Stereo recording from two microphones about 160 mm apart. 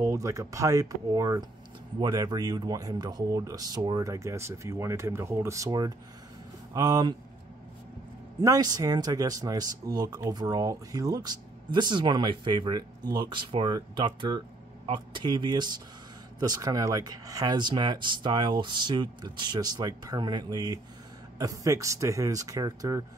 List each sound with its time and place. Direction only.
0.0 s speech: 20° right (ahead or behind)
8.4 s speech: 25° right (ahead or behind)